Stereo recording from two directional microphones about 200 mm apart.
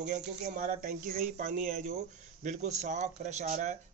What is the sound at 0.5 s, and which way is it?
Speech, 40° right (ahead or behind).